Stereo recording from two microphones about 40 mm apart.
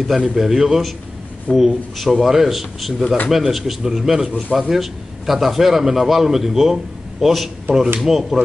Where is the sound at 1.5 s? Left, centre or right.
Left.